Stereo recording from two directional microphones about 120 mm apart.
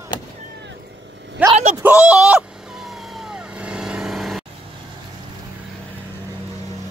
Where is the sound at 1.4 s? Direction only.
15° right (ahead or behind).